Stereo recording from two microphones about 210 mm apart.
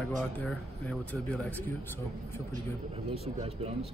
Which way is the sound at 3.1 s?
30° right (ahead or behind).